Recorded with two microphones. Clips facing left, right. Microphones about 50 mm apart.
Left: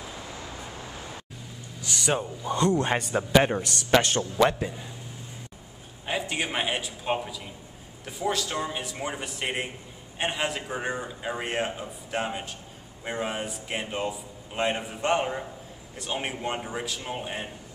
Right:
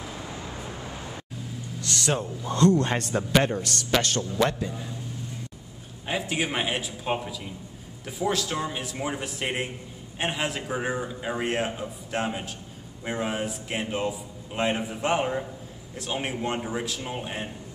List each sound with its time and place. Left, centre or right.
1.8 s speech: centre
3.4 s a man's voice: left
4.6 s speech: centre
6.0 s a man's voice: centre